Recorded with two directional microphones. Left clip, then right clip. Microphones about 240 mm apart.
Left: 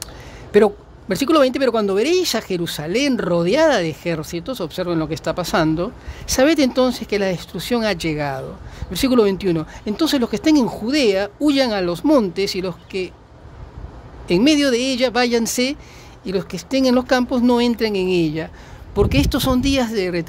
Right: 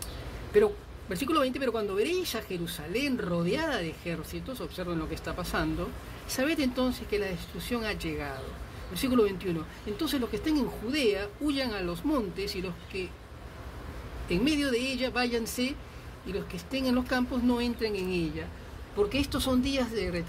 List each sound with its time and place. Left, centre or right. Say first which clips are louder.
0.0 s speech: left 6 dB; left
14.3 s speech: left 12 dB; left